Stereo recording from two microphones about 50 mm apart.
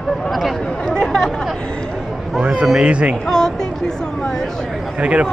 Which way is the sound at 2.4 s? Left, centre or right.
Right.